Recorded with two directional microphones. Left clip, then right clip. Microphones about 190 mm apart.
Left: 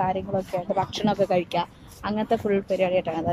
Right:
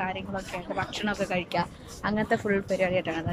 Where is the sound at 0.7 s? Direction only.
25° left (ahead or behind).